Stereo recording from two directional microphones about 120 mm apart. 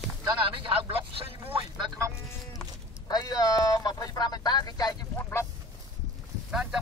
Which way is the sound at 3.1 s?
30° left (ahead or behind).